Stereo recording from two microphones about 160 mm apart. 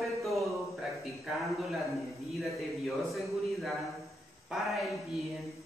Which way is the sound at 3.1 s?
Centre (ahead or behind).